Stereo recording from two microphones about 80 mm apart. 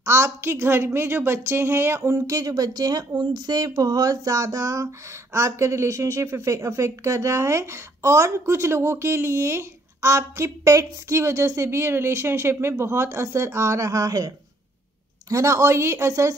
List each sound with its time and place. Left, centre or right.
0.0 s speech: right